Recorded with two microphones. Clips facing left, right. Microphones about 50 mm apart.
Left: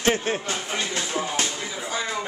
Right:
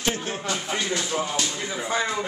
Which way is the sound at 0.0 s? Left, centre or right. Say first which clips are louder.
Left 4 dB; left.